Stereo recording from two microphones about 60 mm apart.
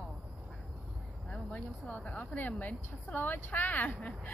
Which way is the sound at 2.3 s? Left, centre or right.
Left.